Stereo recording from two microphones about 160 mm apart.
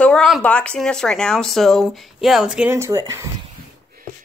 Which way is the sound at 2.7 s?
20° right (ahead or behind).